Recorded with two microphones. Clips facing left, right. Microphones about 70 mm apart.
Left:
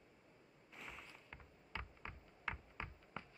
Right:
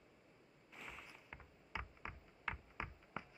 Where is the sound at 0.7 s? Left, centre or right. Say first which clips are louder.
Even; centre.